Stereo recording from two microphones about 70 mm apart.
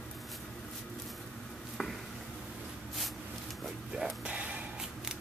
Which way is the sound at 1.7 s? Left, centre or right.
Centre.